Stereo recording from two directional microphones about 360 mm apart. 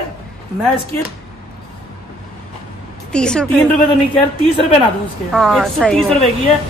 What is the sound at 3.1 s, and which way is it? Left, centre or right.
Speech, centre.